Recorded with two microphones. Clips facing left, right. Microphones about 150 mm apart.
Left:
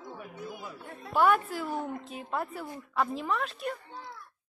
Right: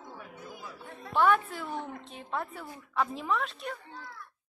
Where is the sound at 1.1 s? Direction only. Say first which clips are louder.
Left 1 dB; 5° left (ahead or behind).